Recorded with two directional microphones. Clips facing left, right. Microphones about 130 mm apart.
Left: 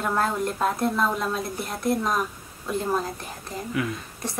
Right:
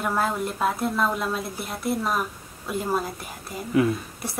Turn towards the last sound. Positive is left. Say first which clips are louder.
# left 1 dB
turn(degrees=-10)  # may be behind; listen again after turning